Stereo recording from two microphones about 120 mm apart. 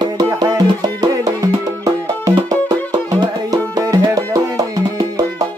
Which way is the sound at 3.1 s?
30° right (ahead or behind).